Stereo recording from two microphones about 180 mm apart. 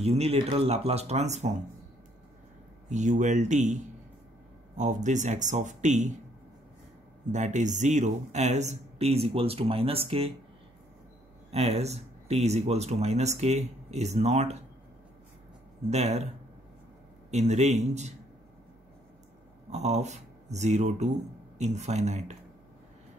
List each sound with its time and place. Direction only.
0.0 s speech: 35° right (ahead or behind)
2.9 s speech: 40° right (ahead or behind)
7.3 s speech: 40° right (ahead or behind)
11.5 s speech: 35° right (ahead or behind)
15.9 s speech: 40° right (ahead or behind)
17.3 s speech: 40° right (ahead or behind)
19.7 s speech: 40° right (ahead or behind)